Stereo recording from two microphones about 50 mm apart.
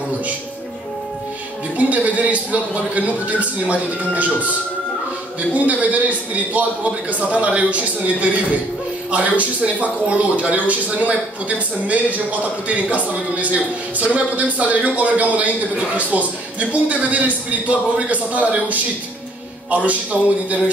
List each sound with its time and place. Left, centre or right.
1.8 s a man's voice: right
5.5 s a man's voice: right
19.9 s a man's voice: right